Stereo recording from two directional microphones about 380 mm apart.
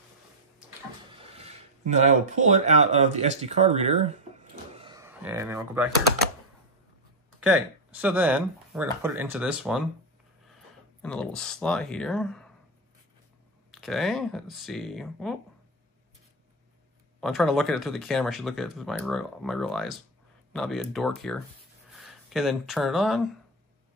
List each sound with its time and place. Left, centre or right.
1.1 s speech: centre
4.7 s a sound: centre
7.4 s speech: centre
11.0 s speech: centre
13.7 s speech: centre
17.2 s speech: centre